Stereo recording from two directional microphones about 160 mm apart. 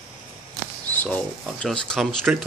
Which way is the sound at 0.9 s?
10° left (ahead or behind).